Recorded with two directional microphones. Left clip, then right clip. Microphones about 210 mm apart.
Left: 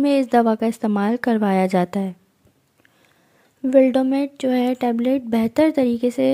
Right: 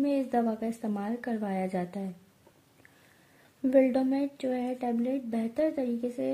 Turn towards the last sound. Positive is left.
turn(degrees=35)  # may be behind; listen again after turning